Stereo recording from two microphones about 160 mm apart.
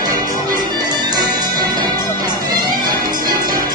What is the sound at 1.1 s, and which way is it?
Music, 25° right (ahead or behind).